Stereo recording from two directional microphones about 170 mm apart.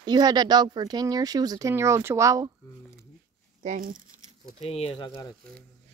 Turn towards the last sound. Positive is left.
turn(degrees=25)  # may be behind; listen again after turning